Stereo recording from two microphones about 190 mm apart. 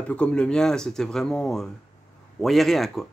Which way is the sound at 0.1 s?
5° left (ahead or behind).